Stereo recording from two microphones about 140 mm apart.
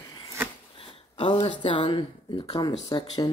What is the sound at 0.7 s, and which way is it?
Speech, 40° left (ahead or behind).